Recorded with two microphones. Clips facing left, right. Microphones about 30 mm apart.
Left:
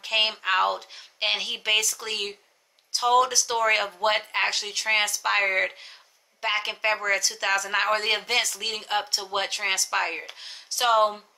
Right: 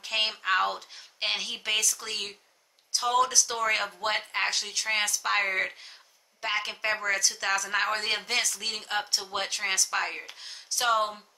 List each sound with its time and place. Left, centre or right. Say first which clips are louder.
0.0 s speech: left 4 dB; centre